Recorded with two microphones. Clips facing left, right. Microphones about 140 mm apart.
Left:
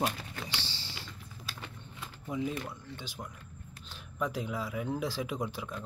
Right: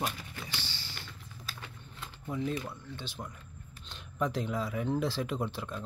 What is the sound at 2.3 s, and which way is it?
Speech, 10° left (ahead or behind).